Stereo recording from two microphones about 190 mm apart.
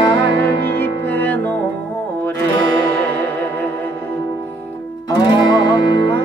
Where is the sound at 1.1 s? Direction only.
10° left (ahead or behind).